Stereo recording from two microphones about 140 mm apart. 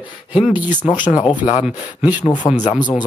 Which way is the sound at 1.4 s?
55° left (ahead or behind).